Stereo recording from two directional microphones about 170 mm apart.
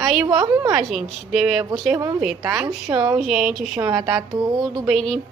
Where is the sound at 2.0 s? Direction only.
15° right (ahead or behind).